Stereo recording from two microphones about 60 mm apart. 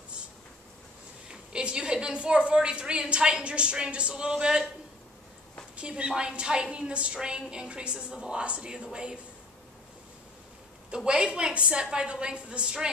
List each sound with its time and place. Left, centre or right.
1.3 s a woman's voice: centre
5.8 s a woman's voice: centre
11.1 s a woman's voice: centre